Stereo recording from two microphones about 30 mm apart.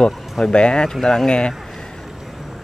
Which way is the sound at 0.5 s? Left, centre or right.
Left.